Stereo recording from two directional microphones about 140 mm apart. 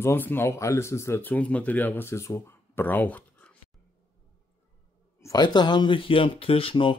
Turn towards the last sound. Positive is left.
turn(degrees=40)  # may be behind; listen again after turning